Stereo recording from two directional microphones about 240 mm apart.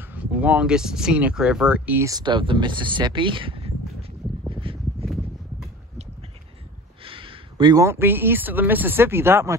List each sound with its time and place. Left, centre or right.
0.0 s speech: centre; by 3.7 s right
4.5 s a sound: right
7.0 s speech: right